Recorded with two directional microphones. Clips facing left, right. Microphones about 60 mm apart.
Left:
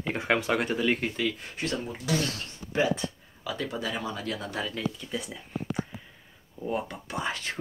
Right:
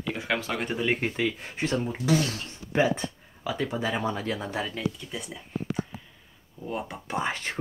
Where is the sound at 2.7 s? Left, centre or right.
Right.